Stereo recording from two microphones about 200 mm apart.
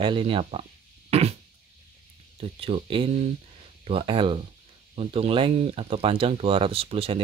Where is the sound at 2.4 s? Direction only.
30° right (ahead or behind).